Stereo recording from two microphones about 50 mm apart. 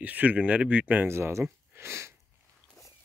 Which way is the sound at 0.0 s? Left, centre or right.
Right.